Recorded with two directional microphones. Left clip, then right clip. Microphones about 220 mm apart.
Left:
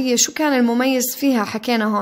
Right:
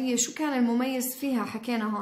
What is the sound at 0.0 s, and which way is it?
Speech, 40° left (ahead or behind).